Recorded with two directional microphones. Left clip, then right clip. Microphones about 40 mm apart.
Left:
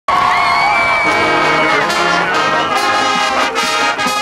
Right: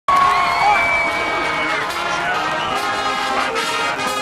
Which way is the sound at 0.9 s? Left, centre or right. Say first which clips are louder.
Left 6 dB; left.